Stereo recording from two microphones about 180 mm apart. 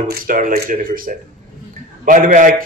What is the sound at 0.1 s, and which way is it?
Speech, 50° right (ahead or behind).